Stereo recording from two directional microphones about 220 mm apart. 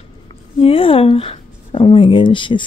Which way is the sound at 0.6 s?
25° left (ahead or behind).